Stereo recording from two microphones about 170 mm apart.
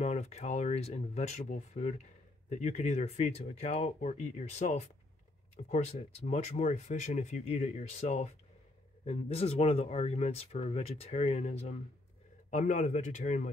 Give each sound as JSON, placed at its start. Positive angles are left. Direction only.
{"t": 0.0, "sound": "speech", "side_deg": 40}